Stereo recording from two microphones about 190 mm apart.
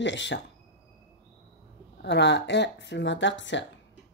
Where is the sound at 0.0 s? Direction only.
70° left (ahead or behind).